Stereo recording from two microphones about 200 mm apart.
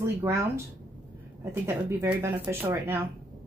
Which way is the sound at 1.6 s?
15° right (ahead or behind).